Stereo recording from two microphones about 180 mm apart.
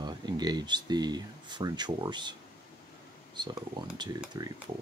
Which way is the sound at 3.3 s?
25° right (ahead or behind).